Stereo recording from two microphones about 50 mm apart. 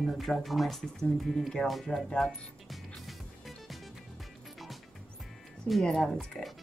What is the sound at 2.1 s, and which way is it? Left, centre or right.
Music, centre.